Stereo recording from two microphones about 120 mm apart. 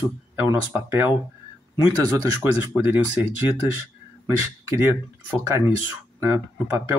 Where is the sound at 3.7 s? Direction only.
20° right (ahead or behind).